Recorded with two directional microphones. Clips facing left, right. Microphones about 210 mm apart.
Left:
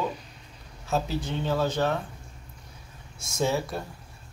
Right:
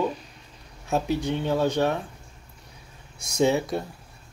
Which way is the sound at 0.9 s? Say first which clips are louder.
Right 4 dB; 15° right (ahead or behind).